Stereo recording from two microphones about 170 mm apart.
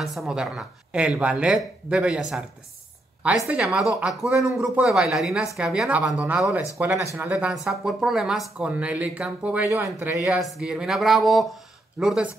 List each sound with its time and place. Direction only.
0.0 s speech: centre (ahead or behind)